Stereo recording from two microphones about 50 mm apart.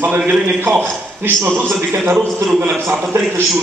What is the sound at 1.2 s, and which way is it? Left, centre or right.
Speech, right.